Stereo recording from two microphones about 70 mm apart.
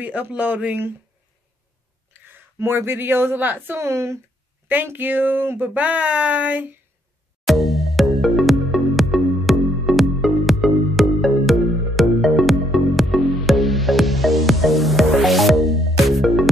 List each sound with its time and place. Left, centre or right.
0.0 s speech: right
2.1 s speech: right
4.6 s speech: right
7.4 s music: centre